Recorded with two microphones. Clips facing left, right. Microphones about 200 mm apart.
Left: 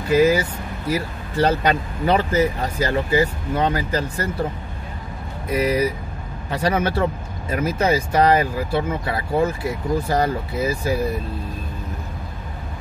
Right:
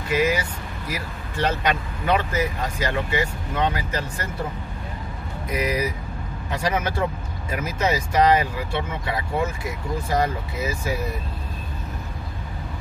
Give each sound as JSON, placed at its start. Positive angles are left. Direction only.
{"t": 0.1, "sound": "speech", "side_deg": 35}
{"t": 5.5, "sound": "speech", "side_deg": 30}